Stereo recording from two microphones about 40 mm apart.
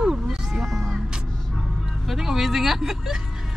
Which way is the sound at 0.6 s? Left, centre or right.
Centre.